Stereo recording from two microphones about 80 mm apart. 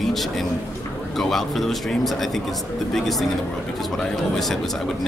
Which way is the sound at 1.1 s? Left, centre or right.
Centre.